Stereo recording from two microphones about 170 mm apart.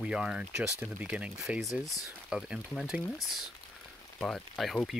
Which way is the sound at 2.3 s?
5° right (ahead or behind).